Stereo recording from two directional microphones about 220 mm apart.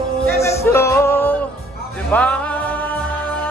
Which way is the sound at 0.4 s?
10° left (ahead or behind).